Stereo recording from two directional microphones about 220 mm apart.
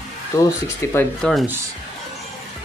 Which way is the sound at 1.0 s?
5° left (ahead or behind).